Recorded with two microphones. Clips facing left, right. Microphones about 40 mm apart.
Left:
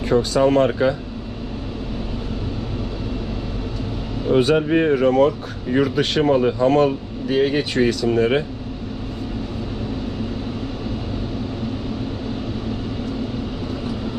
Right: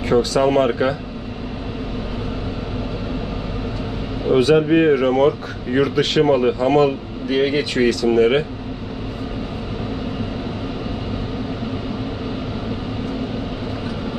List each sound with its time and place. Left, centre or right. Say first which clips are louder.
0.1 s speech: even; right
4.4 s speech: right 3 dB; right
7.3 s speech: even; right
7.7 s speech: right 2 dB; right